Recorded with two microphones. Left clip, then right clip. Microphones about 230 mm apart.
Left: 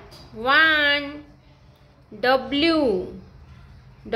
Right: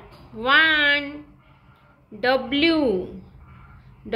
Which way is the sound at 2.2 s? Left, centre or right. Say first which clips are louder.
Even; left.